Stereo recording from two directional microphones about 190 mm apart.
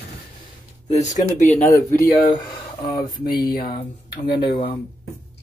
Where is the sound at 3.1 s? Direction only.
50° left (ahead or behind).